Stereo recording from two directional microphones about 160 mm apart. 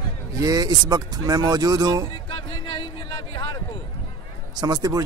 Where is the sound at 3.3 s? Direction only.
25° left (ahead or behind).